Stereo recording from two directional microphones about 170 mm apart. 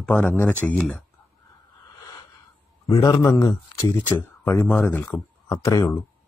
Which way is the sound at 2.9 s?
20° left (ahead or behind).